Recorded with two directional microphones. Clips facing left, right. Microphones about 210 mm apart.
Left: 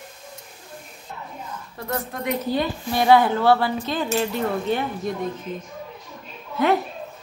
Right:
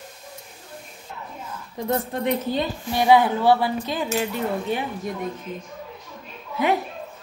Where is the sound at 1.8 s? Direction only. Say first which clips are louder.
Right 4 dB; 20° right (ahead or behind).